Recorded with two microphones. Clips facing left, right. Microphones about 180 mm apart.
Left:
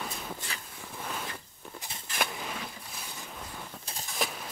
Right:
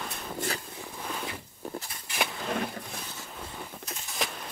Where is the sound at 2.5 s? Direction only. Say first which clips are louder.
Right 9 dB; 60° right (ahead or behind).